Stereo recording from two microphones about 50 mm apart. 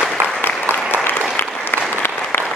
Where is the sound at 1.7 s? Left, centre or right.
Left.